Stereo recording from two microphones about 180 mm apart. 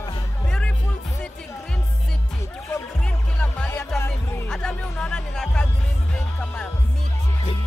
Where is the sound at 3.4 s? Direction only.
5° left (ahead or behind).